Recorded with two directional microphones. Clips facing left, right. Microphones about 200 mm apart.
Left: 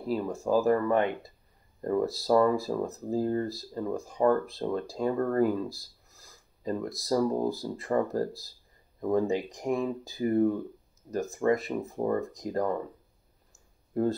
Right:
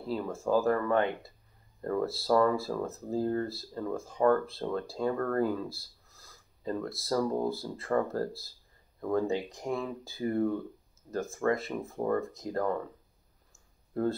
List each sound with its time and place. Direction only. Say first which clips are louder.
0.0 s speech: left 3 dB; 15° left (ahead or behind)